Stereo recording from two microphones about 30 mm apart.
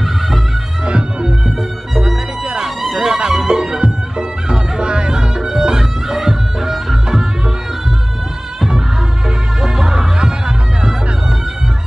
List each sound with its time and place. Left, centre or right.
0.8 s music: right
2.9 s music: right
4.5 s music: right; by 7.0 s centre
9.6 s music: centre